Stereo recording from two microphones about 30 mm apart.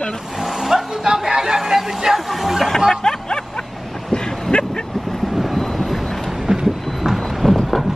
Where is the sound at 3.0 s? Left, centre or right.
Left.